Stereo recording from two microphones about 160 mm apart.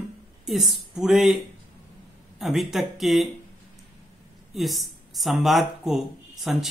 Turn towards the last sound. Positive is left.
turn(degrees=0)  # may be behind; listen again after turning